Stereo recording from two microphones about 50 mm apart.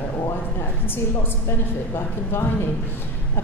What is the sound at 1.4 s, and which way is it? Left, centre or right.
A woman's voice, left.